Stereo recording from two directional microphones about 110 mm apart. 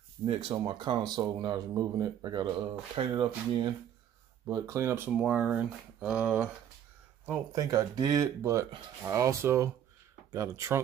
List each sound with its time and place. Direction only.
0.3 s speech: 60° right (ahead or behind); by 5.1 s 20° right (ahead or behind)
5.1 s speech: 10° right (ahead or behind)
7.5 s speech: 35° right (ahead or behind)